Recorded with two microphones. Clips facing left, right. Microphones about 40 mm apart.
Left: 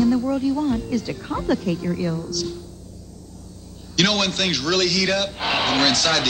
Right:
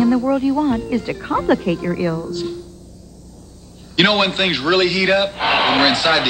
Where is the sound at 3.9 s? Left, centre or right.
Right.